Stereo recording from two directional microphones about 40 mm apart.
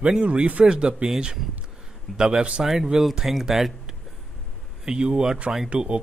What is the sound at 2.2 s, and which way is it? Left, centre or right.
Speech, right.